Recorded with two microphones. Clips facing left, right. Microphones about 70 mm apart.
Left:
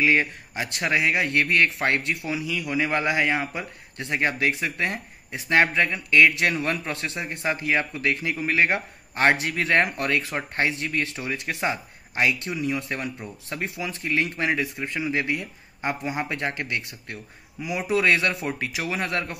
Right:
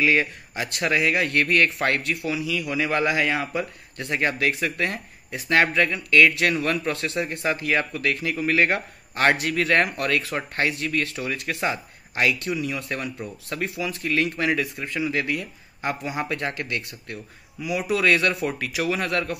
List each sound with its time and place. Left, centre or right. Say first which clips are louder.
0.0 s a man's voice: even; left